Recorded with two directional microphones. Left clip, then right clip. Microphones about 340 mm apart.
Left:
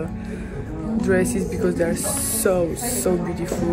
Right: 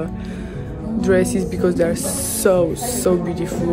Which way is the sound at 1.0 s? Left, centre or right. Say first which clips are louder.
Right 4 dB; centre.